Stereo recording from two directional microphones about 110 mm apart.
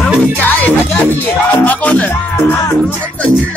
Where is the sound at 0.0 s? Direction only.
15° left (ahead or behind).